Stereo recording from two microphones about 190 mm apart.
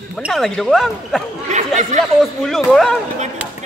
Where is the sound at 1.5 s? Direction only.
40° right (ahead or behind).